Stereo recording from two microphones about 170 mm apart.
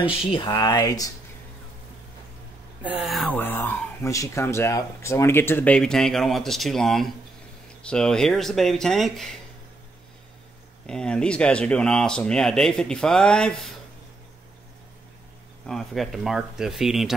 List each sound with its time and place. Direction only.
0.2 s speech: 30° left (ahead or behind)
2.8 s speech: 10° right (ahead or behind)
3.3 s speech: 10° left (ahead or behind)
10.9 s speech: 5° left (ahead or behind)
15.6 s speech: centre (ahead or behind)